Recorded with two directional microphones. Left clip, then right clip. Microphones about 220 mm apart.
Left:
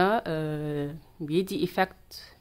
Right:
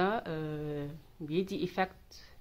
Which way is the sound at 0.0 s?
30° left (ahead or behind).